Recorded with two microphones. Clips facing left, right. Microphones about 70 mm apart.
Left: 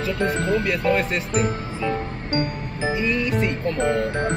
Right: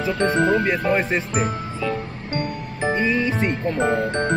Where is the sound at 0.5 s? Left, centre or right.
Right.